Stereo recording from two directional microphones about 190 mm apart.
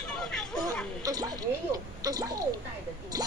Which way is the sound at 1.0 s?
20° right (ahead or behind).